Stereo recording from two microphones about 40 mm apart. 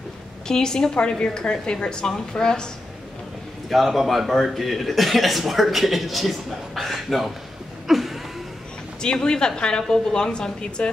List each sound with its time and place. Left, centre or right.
0.5 s a woman's voice: centre
3.6 s a man's voice: centre
7.9 s a sound: centre
9.0 s a woman's voice: left